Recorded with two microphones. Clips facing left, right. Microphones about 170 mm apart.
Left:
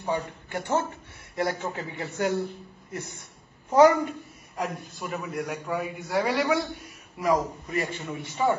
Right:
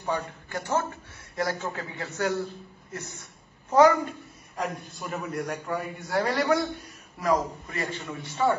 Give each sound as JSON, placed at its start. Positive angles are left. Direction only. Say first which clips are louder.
{"t": 0.0, "sound": "a man's voice", "louder": "left 1 dB", "side_deg": 20}
{"t": 4.9, "sound": "a man's voice", "louder": "even", "side_deg": 0}
{"t": 7.2, "sound": "a man's voice", "louder": "left 1 dB", "side_deg": 10}